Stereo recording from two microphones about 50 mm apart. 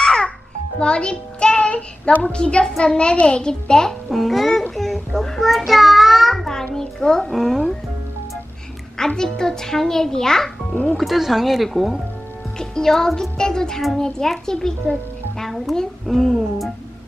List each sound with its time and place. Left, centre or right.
0.0 s babbling: centre
0.7 s a child's voice: centre
4.1 s babbling: centre
4.7 s a sound: centre
5.7 s child singing: centre
6.7 s a sound: centre
7.3 s a child's voice: centre
8.9 s a child's voice: centre
10.7 s speech: left
11.0 s a child's voice: centre
16.2 s music: centre